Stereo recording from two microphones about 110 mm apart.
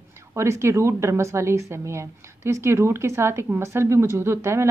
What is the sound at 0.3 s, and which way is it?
A woman's voice, 25° right (ahead or behind).